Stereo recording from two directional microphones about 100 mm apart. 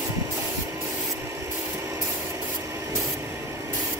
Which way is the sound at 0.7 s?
30° right (ahead or behind).